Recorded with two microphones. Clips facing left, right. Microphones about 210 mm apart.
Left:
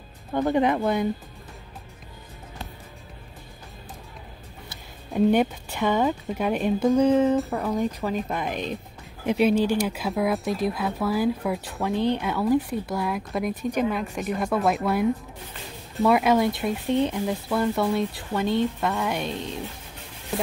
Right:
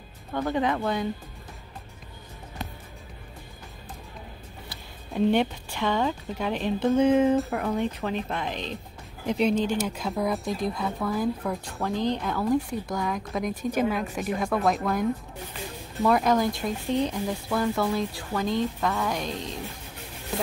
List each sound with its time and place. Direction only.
0.3 s a woman's voice: 15° left (ahead or behind)
5.1 s a woman's voice: 5° left (ahead or behind)
7.0 s a woman's voice: 10° right (ahead or behind)